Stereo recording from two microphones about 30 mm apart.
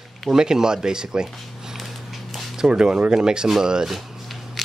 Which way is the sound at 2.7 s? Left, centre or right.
Right.